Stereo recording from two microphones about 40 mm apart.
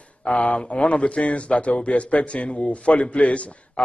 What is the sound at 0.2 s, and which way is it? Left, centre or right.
A man's voice, left.